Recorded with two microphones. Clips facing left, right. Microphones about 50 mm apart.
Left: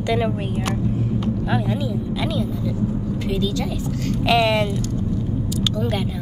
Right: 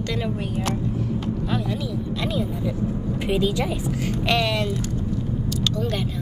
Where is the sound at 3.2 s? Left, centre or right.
Right.